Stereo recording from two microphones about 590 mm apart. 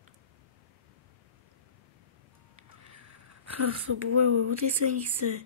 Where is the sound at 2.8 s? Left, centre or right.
Right.